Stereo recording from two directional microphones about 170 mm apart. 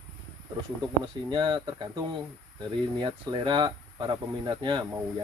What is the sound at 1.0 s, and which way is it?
Speech, 30° right (ahead or behind).